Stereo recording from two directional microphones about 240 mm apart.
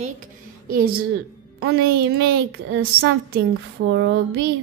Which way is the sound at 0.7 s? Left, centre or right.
Right.